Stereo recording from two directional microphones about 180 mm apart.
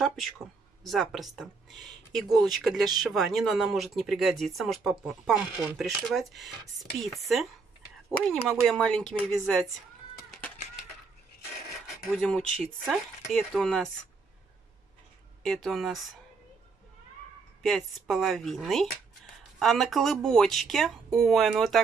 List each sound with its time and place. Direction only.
0.0 s speech: centre (ahead or behind)
8.5 s speech: centre (ahead or behind)
12.2 s speech: 5° left (ahead or behind)
15.4 s speech: centre (ahead or behind)
17.6 s speech: centre (ahead or behind)